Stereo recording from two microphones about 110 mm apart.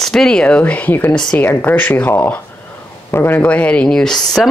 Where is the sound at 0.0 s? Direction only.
5° left (ahead or behind).